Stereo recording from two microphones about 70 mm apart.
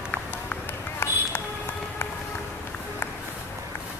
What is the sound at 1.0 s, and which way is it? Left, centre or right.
Run, left.